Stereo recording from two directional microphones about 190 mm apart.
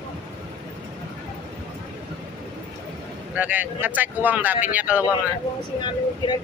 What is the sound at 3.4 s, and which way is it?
Speech, 10° right (ahead or behind).